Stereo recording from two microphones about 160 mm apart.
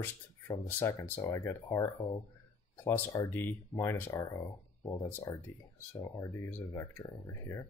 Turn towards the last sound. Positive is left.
turn(degrees=20)  # may be behind; listen again after turning